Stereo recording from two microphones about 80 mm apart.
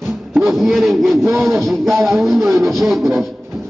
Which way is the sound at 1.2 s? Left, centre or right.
Right.